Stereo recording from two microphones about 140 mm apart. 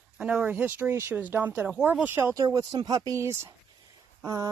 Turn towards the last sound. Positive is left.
turn(degrees=-25)  # may be behind; listen again after turning